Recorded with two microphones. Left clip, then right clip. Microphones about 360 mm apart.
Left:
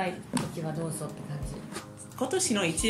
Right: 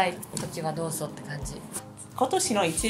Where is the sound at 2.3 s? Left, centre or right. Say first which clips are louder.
Right 1 dB; centre.